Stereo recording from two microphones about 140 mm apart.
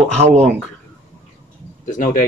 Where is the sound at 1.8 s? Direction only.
65° left (ahead or behind).